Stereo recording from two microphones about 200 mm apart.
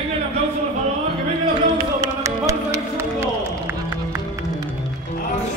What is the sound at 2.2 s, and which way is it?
Music, 15° right (ahead or behind).